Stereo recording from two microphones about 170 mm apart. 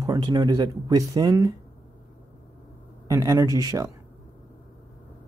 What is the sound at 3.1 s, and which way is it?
Speech, 20° right (ahead or behind).